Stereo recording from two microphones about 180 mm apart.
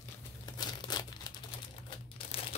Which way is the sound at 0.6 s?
25° left (ahead or behind).